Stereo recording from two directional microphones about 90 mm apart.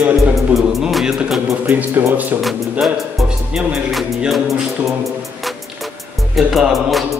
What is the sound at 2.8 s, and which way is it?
Music, centre (ahead or behind).